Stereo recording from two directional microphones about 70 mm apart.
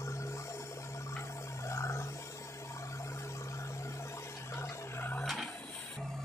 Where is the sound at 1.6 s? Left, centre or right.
Left.